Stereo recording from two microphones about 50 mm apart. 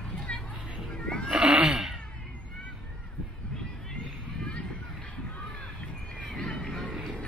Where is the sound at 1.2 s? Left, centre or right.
Centre.